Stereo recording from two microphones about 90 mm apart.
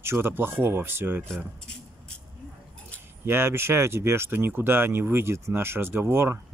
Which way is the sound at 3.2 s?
25° right (ahead or behind).